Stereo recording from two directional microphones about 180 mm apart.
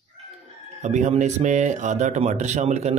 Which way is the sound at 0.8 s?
40° right (ahead or behind).